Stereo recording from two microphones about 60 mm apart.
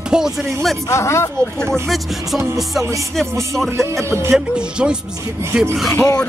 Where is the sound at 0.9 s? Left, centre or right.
Left.